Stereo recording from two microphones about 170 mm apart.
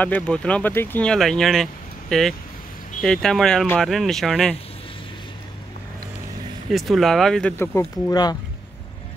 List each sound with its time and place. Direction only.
0.0 s speech: 10° left (ahead or behind)
6.7 s speech: centre (ahead or behind)
7.5 s speech: 15° left (ahead or behind)